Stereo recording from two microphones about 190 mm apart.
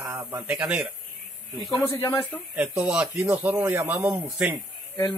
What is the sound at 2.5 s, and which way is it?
Speech, 5° right (ahead or behind).